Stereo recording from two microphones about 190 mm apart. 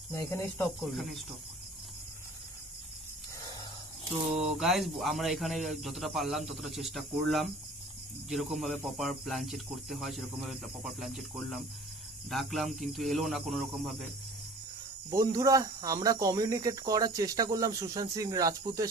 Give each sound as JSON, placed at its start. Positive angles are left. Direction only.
{"t": 0.1, "sound": "speech", "side_deg": 10}
{"t": 0.7, "sound": "speech", "side_deg": 0}
{"t": 4.4, "sound": "speech", "side_deg": 0}
{"t": 15.0, "sound": "speech", "side_deg": -15}